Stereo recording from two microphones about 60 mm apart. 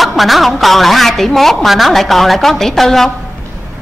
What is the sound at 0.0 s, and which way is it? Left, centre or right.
A woman's voice, centre.